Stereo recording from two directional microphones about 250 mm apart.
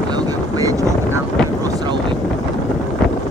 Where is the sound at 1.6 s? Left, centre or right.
Centre.